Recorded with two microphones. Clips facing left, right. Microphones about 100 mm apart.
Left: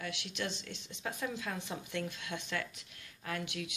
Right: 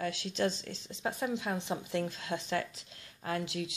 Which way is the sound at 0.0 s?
35° right (ahead or behind).